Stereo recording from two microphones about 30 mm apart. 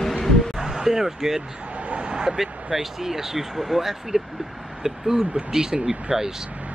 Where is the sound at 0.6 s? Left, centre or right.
Centre.